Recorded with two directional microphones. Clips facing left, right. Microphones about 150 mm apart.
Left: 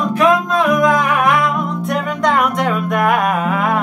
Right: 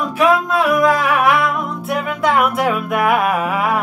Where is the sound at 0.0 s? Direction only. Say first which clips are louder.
Left 1 dB; 5° right (ahead or behind).